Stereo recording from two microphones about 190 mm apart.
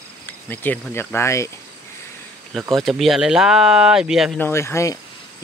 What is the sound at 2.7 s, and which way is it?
Speech, centre (ahead or behind).